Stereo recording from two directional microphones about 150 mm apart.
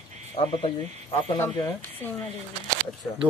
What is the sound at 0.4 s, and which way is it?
Speech, 35° left (ahead or behind).